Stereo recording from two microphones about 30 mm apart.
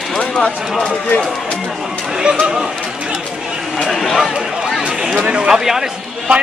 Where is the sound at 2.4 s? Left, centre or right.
Right.